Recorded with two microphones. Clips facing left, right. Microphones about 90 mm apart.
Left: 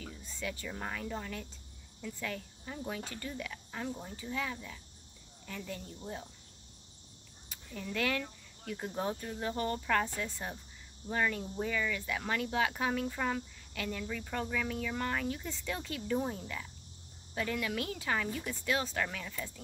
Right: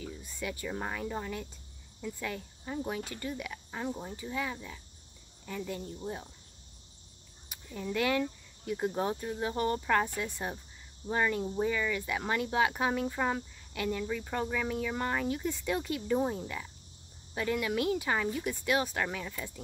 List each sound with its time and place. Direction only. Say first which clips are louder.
0.2 s speech: right 1 dB; 10° right (ahead or behind)
7.4 s speech: right 4 dB; 15° right (ahead or behind)